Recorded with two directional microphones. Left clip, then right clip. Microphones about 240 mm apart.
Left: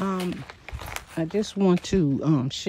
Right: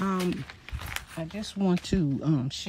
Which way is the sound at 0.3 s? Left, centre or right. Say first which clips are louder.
Even; left.